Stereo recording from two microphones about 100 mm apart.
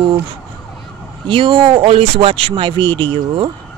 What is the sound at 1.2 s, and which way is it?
Speech, 55° right (ahead or behind).